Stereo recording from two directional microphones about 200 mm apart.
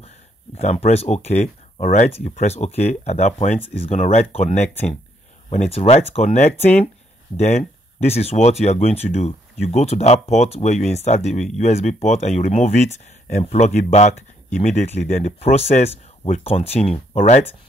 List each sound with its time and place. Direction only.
0.6 s speech: 35° left (ahead or behind)